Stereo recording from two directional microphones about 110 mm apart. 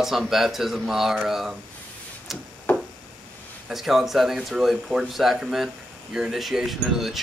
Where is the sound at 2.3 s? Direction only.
Centre (ahead or behind).